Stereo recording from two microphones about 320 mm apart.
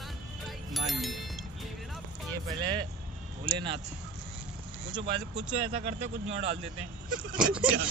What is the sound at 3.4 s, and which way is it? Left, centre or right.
Speech, centre.